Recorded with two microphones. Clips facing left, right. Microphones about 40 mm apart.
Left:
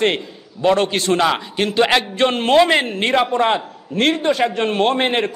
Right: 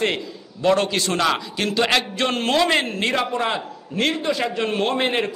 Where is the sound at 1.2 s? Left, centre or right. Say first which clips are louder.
Left 3 dB; left.